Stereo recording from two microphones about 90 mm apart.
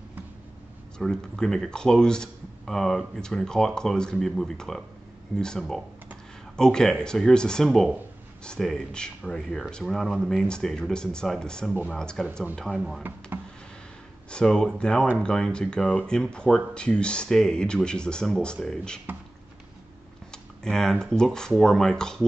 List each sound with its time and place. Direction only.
0.9 s speech: 5° left (ahead or behind)
11.7 s speech: 20° right (ahead or behind)
12.0 s speech: 10° left (ahead or behind)
12.7 s speech: 5° right (ahead or behind)
14.3 s speech: 5° left (ahead or behind)
20.2 s tick-tock: 5° left (ahead or behind)
21.0 s speech: 5° left (ahead or behind)